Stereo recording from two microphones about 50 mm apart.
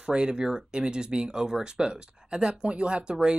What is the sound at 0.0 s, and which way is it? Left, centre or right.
Speech, centre.